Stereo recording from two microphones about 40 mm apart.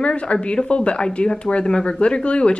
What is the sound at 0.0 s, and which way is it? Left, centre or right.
Speech, left.